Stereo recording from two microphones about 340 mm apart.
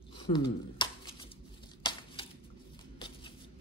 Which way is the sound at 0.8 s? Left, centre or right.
Centre.